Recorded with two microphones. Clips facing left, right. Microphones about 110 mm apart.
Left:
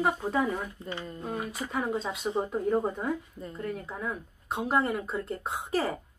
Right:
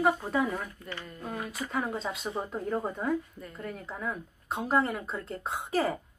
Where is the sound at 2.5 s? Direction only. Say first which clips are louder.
Left 4 dB; 5° left (ahead or behind).